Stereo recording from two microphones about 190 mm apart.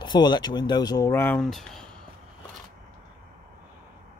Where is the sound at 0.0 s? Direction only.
25° left (ahead or behind); by 1.9 s centre (ahead or behind).